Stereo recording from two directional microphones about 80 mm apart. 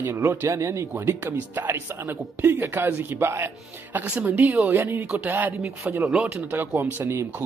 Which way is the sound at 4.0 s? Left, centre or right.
Centre.